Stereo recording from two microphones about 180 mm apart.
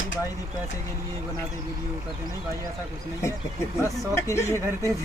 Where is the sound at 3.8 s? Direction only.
15° left (ahead or behind).